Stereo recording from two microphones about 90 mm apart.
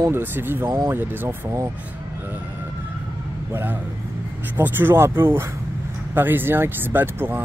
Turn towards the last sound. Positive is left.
turn(degrees=-25)  # may be behind; listen again after turning